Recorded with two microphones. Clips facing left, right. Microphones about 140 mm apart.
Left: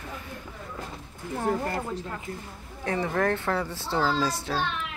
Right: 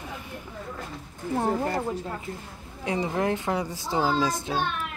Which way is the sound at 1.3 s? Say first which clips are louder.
Right 2 dB; 35° right (ahead or behind).